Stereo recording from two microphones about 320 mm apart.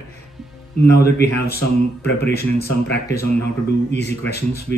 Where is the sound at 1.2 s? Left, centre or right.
Left.